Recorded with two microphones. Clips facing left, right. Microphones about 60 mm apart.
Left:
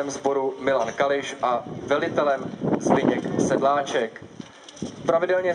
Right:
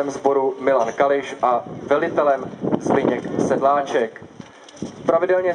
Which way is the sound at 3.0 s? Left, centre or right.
Centre.